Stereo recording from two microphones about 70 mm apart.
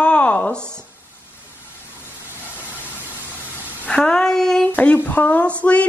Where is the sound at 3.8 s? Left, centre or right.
Centre.